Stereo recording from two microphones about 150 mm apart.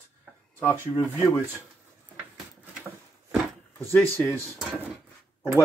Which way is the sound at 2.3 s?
10° right (ahead or behind).